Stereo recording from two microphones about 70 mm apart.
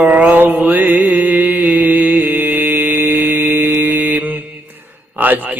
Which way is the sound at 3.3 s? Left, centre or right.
Right.